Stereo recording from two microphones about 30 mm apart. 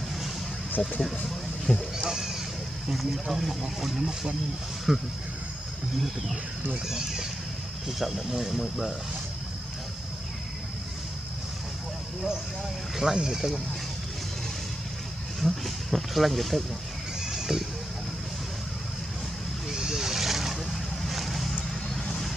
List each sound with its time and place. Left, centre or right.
0.8 s speech: centre
2.0 s speech: centre
4.9 s speech: centre
6.9 s speech: centre
13.1 s speech: centre
15.4 s speech: centre
17.3 s a sound: centre
19.7 s slosh: centre
20.7 s boat: centre